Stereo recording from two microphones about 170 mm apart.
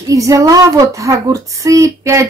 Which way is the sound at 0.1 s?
20° right (ahead or behind).